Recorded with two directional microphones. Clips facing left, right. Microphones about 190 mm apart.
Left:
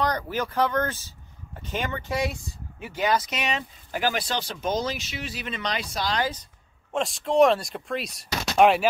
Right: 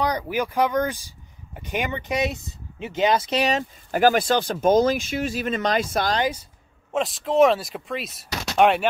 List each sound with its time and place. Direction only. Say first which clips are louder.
0.0 s speech: right 2 dB; 10° right (ahead or behind); by 6.1 s 50° right (ahead or behind)
6.9 s speech: right 2 dB; centre (ahead or behind)